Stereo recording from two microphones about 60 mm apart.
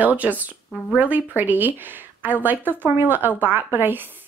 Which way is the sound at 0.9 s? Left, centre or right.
Right.